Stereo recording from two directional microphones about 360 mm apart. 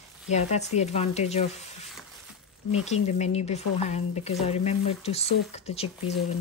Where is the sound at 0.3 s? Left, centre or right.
Centre.